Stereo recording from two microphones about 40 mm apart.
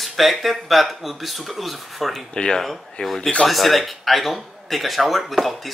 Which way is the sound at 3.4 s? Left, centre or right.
Centre.